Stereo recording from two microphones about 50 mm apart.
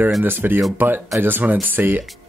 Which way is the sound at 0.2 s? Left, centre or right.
Right.